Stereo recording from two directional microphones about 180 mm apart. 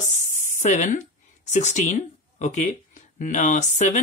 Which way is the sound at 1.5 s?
40° left (ahead or behind).